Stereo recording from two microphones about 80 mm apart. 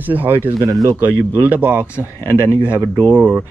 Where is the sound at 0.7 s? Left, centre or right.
Right.